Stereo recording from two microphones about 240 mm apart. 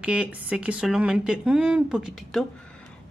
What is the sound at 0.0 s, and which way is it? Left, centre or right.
A woman's voice, centre.